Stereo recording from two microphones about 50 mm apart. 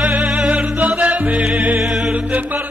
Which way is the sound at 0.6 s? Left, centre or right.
Right.